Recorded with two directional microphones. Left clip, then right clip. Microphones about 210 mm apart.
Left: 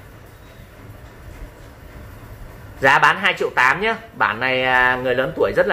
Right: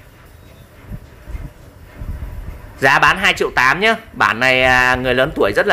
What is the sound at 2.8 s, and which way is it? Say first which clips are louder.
Speech: right 2 dB; 50° right (ahead or behind).